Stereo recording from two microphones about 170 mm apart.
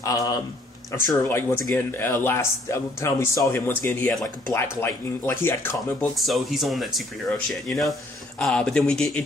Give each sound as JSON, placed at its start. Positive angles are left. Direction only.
{"t": 0.0, "sound": "speech", "side_deg": 20}
{"t": 6.1, "sound": "speech", "side_deg": 0}